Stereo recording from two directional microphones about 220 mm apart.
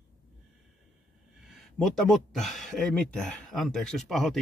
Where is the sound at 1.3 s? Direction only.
Centre (ahead or behind).